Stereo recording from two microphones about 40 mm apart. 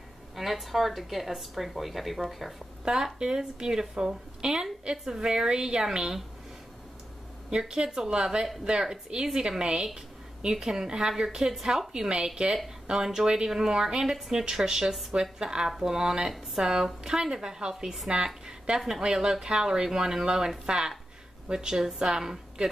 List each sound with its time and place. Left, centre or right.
0.4 s speech: centre
2.8 s speech: centre
7.5 s speech: centre
12.4 s speech: right
12.9 s speech: centre